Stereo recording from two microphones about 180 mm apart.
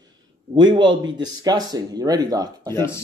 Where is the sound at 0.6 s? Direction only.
25° right (ahead or behind).